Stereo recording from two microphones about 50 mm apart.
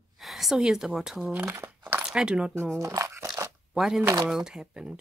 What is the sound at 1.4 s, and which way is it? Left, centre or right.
Speech, right.